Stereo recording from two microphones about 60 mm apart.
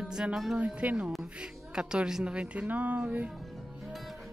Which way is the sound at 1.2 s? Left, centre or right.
Centre.